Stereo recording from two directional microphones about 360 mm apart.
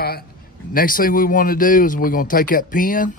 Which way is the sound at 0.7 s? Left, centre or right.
Left.